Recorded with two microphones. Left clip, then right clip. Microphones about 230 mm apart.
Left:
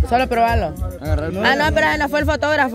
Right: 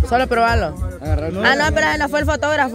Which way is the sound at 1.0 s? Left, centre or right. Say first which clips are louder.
Even; left.